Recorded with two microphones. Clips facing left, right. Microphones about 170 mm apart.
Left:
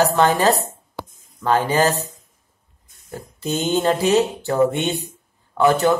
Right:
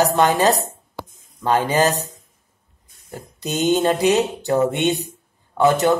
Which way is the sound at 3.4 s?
20° right (ahead or behind).